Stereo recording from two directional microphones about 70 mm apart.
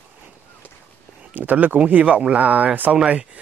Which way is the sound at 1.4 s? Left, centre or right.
Right.